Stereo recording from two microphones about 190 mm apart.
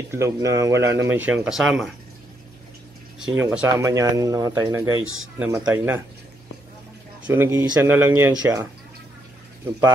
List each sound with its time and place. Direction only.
0.1 s speech: 15° right (ahead or behind)
3.2 s speech: 5° right (ahead or behind)
3.6 s speech: 15° right (ahead or behind)
5.0 s speech: 90° right
5.7 s speech: 10° right (ahead or behind)
7.2 s speech: 10° right (ahead or behind)